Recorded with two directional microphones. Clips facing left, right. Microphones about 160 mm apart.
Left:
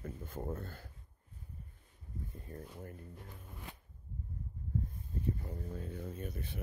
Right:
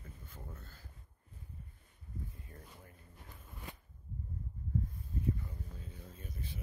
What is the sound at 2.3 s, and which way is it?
Speech, 40° left (ahead or behind).